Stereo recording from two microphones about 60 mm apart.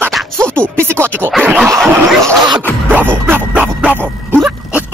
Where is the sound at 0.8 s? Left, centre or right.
Right.